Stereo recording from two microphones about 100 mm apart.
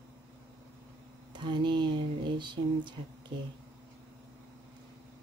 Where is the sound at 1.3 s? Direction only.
50° right (ahead or behind).